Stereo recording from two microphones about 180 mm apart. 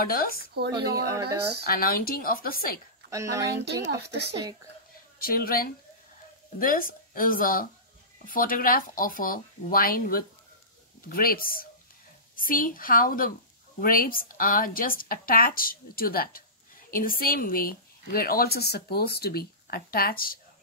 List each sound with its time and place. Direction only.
0.0 s speech: 55° left (ahead or behind)
1.7 s speech: 55° left (ahead or behind)
3.1 s speech: 20° right (ahead or behind)
3.6 s speech: 70° right (ahead or behind)
5.2 s a woman's voice: 55° left (ahead or behind)